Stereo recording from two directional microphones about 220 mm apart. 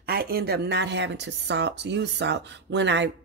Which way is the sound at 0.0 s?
45° right (ahead or behind).